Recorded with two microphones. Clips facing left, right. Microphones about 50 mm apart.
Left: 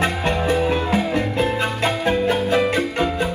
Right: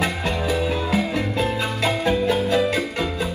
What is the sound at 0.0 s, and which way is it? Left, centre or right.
Music, left.